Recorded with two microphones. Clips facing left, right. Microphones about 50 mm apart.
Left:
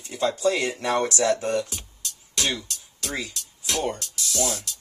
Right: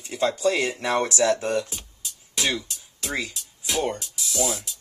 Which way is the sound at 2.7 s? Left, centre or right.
Centre.